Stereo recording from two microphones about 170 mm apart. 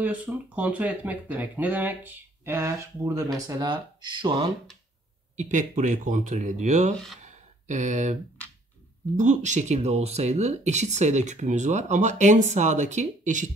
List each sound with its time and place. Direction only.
0.0 s speech: 10° right (ahead or behind); by 4.5 s 30° right (ahead or behind)
5.3 s speech: 45° right (ahead or behind)
7.2 s a sound: 45° right (ahead or behind)
9.1 s speech: 45° right (ahead or behind)